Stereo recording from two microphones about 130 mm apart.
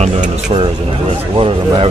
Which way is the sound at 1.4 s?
45° right (ahead or behind).